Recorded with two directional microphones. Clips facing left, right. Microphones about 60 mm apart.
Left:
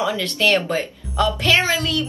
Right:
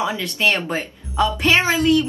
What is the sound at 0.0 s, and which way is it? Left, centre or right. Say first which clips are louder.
A woman's voice: even; right.